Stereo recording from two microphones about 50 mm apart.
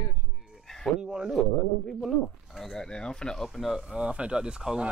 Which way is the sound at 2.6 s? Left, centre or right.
Centre.